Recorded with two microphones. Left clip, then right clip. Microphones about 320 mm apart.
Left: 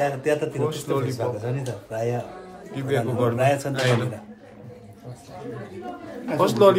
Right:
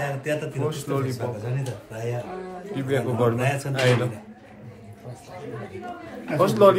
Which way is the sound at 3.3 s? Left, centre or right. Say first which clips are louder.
Left 5 dB; left.